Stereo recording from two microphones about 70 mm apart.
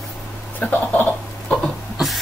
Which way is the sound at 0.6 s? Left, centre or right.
Left.